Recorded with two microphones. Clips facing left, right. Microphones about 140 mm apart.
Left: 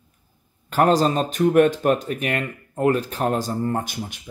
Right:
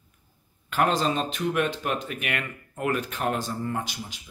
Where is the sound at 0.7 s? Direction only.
40° left (ahead or behind).